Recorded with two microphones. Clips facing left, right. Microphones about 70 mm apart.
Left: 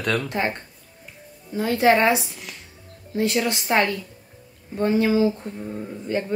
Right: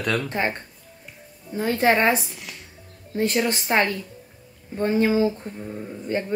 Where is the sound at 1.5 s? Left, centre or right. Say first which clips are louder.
Left 2 dB; right.